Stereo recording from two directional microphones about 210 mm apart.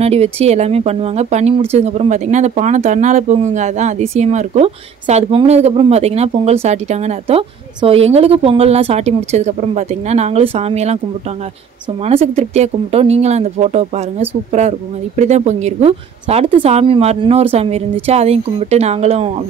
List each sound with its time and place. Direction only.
0.0 s speech: 30° right (ahead or behind)
12.0 s a woman's voice: 30° right (ahead or behind)